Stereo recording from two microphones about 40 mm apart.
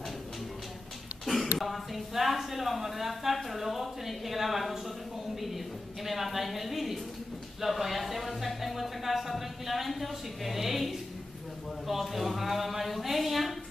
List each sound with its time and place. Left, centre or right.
1.2 s a man's voice: centre